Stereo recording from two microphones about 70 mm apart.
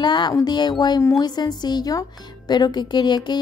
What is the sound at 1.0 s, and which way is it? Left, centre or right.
A woman's voice, left.